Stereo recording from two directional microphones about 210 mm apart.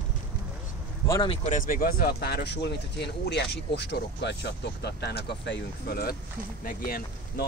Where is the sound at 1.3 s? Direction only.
25° left (ahead or behind).